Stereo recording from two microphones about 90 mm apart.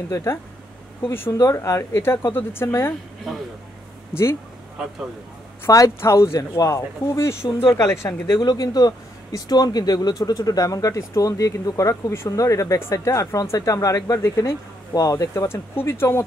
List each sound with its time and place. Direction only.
0.1 s speech: 30° left (ahead or behind)
4.1 s speech: 25° left (ahead or behind)
5.7 s speech: 35° left (ahead or behind)
8.4 s speech: 50° left (ahead or behind); by 16.3 s 30° left (ahead or behind)